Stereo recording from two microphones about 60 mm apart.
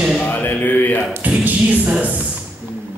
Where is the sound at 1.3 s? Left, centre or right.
Right.